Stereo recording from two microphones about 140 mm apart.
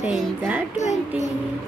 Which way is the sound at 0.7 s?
55° left (ahead or behind).